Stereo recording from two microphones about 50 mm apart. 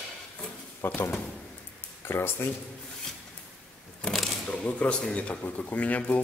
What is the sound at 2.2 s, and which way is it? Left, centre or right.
Speech, left.